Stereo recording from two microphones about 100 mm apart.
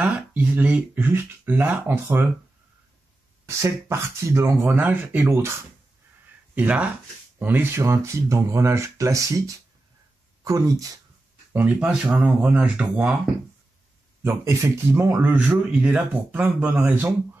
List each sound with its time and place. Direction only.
0.0 s speech: 15° right (ahead or behind)
3.4 s speech: 30° right (ahead or behind); by 5.2 s 15° right (ahead or behind)
5.2 s speech: 25° right (ahead or behind)
10.4 s speech: 35° right (ahead or behind)
11.5 s speech: 15° right (ahead or behind)
14.2 s speech: 25° right (ahead or behind)